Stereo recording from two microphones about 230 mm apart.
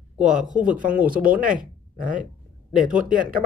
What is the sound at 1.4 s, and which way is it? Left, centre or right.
Speech, right.